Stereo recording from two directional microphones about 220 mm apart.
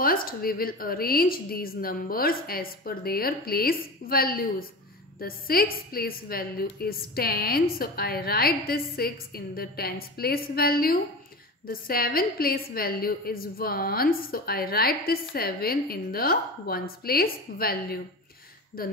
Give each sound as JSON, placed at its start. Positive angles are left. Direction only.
{"t": 0.0, "sound": "a woman's voice", "side_deg": 40}